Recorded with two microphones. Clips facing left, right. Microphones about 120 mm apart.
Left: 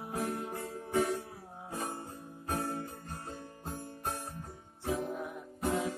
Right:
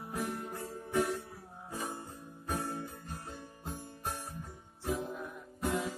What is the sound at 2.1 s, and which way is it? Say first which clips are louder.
Music: left 1 dB; 35° left (ahead or behind).